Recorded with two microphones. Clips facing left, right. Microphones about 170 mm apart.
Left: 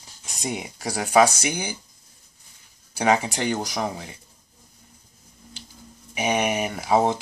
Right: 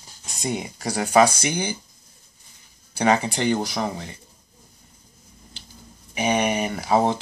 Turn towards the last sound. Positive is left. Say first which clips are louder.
# even
turn(degrees=10)  # may be behind; listen again after turning